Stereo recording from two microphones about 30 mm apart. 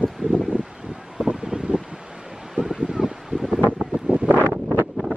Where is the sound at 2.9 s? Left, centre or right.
Centre.